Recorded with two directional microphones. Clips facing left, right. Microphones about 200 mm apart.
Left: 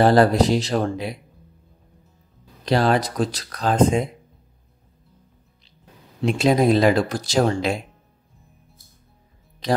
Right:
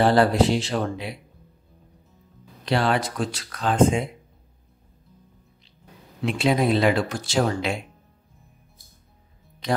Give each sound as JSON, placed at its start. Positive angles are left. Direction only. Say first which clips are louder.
{"t": 0.0, "sound": "speech", "louder": "left 3 dB", "side_deg": 40}
{"t": 2.6, "sound": "speech", "louder": "left 3 dB", "side_deg": 40}
{"t": 6.2, "sound": "speech", "louder": "left 4 dB", "side_deg": 40}